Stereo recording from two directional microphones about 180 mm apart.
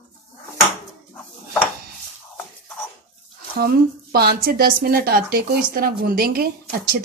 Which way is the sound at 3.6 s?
60° right (ahead or behind).